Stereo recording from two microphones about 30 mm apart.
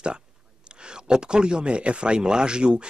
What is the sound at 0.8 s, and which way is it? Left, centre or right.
Speech, right.